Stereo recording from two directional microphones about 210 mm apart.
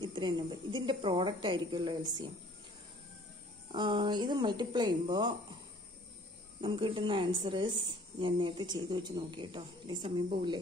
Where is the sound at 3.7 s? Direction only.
20° right (ahead or behind).